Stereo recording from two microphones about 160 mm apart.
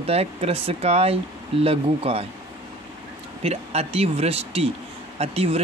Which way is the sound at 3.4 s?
40° right (ahead or behind).